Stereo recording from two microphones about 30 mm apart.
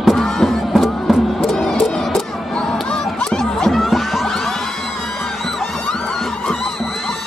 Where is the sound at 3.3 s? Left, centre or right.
Centre.